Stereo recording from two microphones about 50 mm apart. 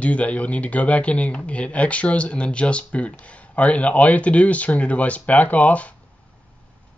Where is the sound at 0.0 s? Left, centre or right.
Left.